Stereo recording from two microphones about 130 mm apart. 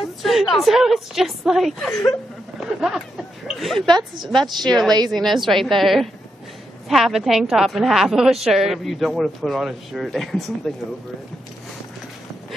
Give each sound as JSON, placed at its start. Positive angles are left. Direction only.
{"t": 0.0, "sound": "speech", "side_deg": 0}
{"t": 4.9, "sound": "a woman's voice", "side_deg": -30}
{"t": 5.2, "sound": "speech", "side_deg": 0}